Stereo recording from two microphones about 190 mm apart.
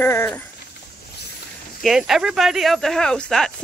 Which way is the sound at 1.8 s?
Centre (ahead or behind).